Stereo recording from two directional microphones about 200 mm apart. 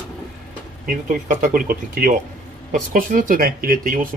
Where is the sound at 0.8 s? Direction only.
45° right (ahead or behind).